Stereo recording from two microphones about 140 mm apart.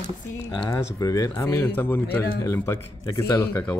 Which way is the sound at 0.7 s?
25° left (ahead or behind).